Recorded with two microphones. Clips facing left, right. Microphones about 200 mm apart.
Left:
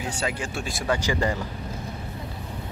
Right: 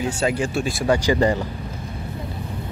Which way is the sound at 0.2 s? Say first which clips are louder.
Right 9 dB; 30° right (ahead or behind).